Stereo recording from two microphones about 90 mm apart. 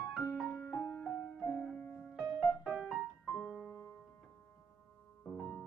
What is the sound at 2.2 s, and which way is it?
Music, 5° right (ahead or behind).